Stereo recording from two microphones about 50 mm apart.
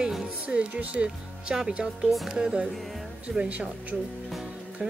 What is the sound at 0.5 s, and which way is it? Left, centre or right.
Speech, right.